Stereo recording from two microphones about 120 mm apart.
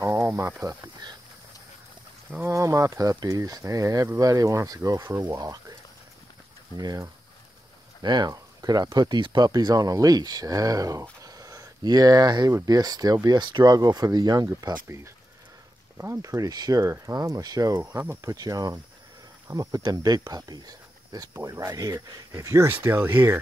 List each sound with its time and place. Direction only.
0.0 s speech: 20° right (ahead or behind)
2.5 s speech: 25° right (ahead or behind)
6.8 s speech: 35° right (ahead or behind)
16.0 s speech: 25° right (ahead or behind)
17.7 s speech: 15° right (ahead or behind)